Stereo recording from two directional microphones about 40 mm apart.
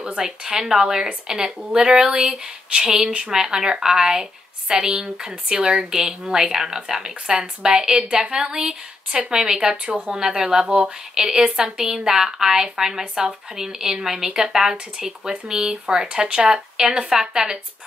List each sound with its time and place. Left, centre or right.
0.0 s speech: centre